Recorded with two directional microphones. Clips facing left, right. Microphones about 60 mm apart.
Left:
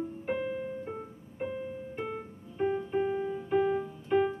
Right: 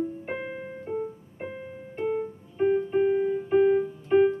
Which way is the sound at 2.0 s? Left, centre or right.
Centre.